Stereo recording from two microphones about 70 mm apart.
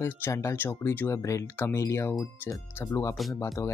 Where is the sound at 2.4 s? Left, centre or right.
Left.